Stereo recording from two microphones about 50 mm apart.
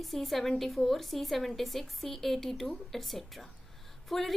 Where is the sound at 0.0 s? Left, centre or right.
Centre.